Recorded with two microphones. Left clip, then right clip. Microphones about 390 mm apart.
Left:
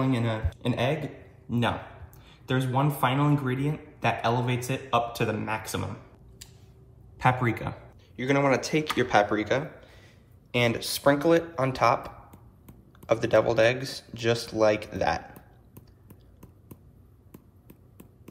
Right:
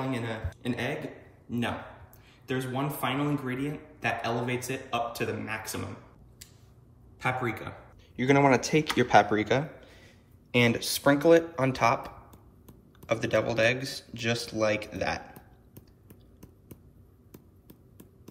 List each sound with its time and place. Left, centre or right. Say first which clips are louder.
0.1 s a man's voice: left 4 dB; centre
7.2 s a man's voice: left 5 dB; centre
8.2 s speech: right 1 dB; centre
15.3 s a sound: left 1 dB; centre
17.3 s basketball bounce: left 1 dB; centre